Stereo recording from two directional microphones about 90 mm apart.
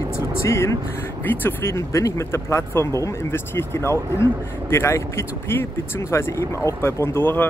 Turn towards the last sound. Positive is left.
turn(degrees=25)  # may be behind; listen again after turning